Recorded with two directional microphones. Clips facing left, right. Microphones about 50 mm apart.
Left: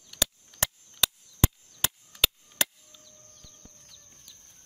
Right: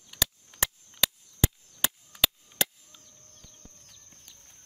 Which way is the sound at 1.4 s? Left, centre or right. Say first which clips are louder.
Left 1 dB; centre.